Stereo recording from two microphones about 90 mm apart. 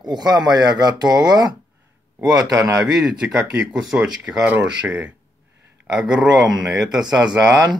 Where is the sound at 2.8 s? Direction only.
10° right (ahead or behind).